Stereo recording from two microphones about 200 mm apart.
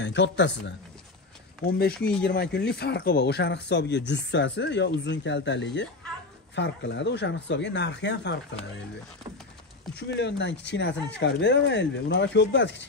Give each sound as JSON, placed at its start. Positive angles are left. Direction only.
{"t": 0.0, "sound": "speech", "side_deg": 60}
{"t": 9.9, "sound": "speech", "side_deg": 60}